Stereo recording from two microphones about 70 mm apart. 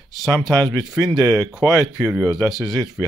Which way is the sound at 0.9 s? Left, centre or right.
Right.